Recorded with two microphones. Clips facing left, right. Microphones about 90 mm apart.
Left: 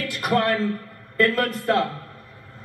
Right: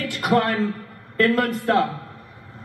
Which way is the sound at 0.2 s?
15° right (ahead or behind).